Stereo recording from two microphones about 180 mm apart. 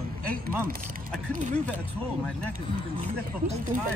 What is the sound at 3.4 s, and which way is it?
Speech, 45° right (ahead or behind).